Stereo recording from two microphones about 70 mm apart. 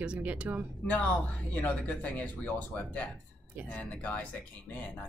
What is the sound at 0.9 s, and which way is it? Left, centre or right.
Speech, centre.